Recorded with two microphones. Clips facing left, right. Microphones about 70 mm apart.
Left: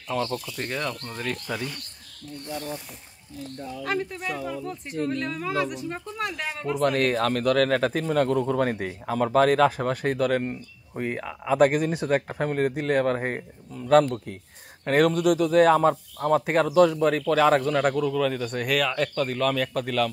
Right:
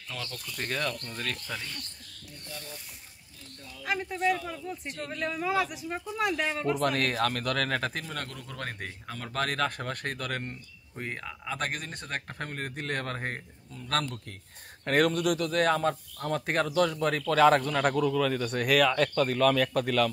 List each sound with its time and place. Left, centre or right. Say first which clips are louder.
0.5 s speech: left 2 dB; centre
2.4 s speech: left 10 dB; left
3.8 s speech: right 1 dB; centre
4.8 s speech: left 10 dB; centre
5.1 s speech: right 3 dB; centre
14.9 s speech: left 5 dB; centre